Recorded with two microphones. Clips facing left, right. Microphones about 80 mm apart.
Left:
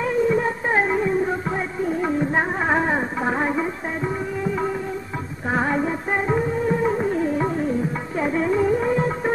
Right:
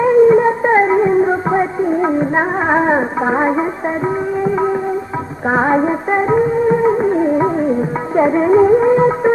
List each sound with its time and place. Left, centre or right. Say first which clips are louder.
0.0 s music: right 11 dB; right
5.5 s music: right 8 dB; right